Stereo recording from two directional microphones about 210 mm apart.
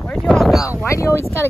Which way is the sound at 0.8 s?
15° left (ahead or behind).